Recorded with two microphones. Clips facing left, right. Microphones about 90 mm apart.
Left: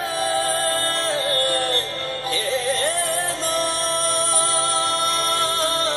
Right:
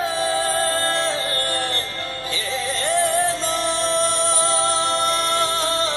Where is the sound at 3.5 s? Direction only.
25° right (ahead or behind).